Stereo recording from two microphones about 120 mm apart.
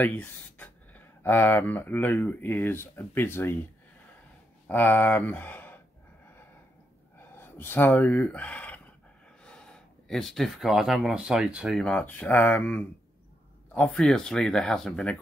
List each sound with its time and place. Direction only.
0.0 s speech: 15° left (ahead or behind)
4.6 s speech: 15° left (ahead or behind)
7.2 s speech: 20° left (ahead or behind); by 11.8 s 5° right (ahead or behind)
11.8 s speech: 5° left (ahead or behind)